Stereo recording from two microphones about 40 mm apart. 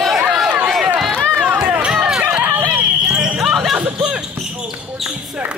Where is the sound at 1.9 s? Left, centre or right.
Centre.